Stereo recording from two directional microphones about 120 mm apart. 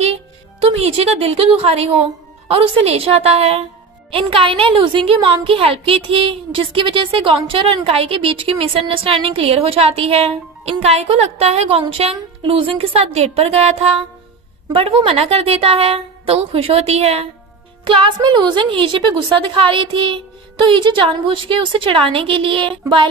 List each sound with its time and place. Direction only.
0.0 s a woman's voice: 55° right (ahead or behind)
14.7 s a woman's voice: 50° right (ahead or behind)
17.8 s a woman's voice: 45° right (ahead or behind)